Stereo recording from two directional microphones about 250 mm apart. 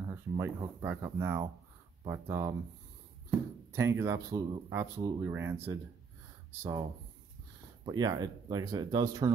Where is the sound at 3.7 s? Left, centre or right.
Centre.